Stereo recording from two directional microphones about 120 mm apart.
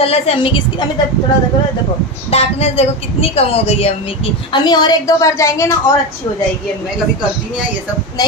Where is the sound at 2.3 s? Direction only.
60° left (ahead or behind).